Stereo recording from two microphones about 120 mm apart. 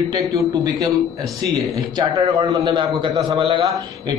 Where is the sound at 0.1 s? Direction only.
30° right (ahead or behind).